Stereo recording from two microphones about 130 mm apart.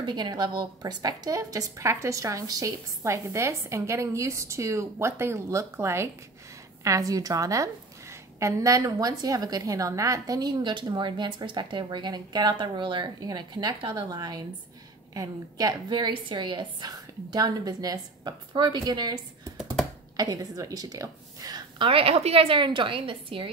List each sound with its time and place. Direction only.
0.0 s a woman's voice: 35° right (ahead or behind)
19.5 s computer keyboard: centre (ahead or behind)
20.2 s a woman's voice: 30° right (ahead or behind)